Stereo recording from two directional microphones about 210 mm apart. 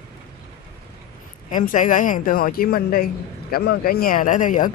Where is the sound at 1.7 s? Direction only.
40° left (ahead or behind).